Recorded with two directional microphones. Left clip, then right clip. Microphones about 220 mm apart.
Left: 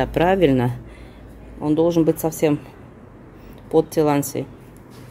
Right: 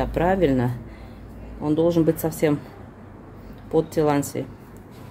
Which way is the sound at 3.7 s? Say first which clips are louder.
Left 3 dB; 20° left (ahead or behind).